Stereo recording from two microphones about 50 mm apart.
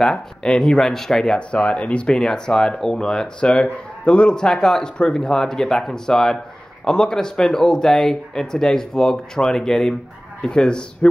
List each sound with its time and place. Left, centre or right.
0.0 s speech: centre